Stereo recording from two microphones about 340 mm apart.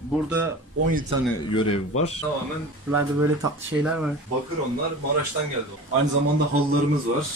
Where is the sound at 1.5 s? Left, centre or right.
Centre.